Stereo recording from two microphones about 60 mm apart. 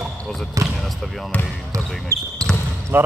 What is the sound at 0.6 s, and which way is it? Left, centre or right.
Speech, right.